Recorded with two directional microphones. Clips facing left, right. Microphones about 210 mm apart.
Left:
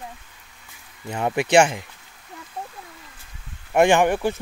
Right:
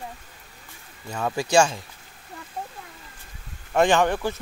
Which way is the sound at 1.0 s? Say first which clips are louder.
Left 3 dB; 20° left (ahead or behind).